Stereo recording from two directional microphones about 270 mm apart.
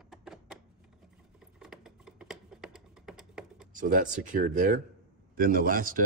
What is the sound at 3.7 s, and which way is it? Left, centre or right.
Speech, right.